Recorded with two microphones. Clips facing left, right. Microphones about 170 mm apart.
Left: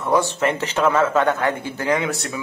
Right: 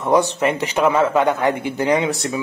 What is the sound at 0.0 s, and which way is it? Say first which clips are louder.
Speech: right 3 dB; 20° right (ahead or behind).